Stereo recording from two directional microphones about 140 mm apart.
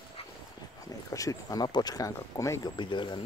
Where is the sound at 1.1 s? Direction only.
25° left (ahead or behind).